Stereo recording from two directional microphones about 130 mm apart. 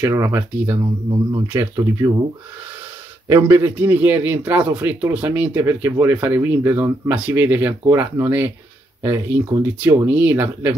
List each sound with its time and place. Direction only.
0.1 s speech: 25° right (ahead or behind)
3.3 s a man's voice: 20° right (ahead or behind)